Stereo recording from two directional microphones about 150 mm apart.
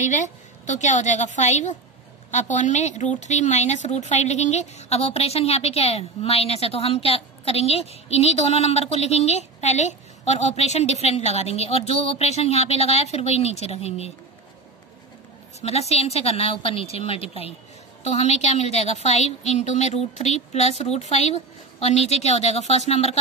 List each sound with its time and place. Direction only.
0.0 s a woman's voice: 55° left (ahead or behind)
15.6 s a woman's voice: 45° left (ahead or behind)